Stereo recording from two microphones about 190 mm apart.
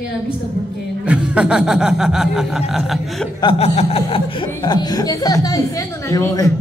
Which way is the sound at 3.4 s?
30° left (ahead or behind).